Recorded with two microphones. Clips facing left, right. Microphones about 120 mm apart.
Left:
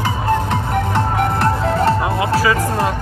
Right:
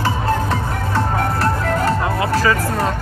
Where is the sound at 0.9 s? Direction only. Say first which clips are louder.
Right 1 dB; 20° left (ahead or behind).